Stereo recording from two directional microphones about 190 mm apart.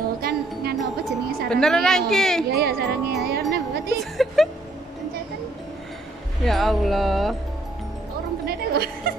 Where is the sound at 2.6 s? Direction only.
55° right (ahead or behind).